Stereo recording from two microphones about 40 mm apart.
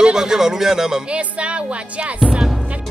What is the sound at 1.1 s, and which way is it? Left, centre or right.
Music, right.